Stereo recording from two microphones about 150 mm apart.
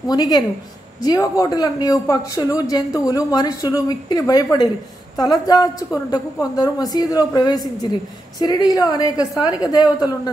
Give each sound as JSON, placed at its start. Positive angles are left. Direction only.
{"t": 0.1, "sound": "speech", "side_deg": 25}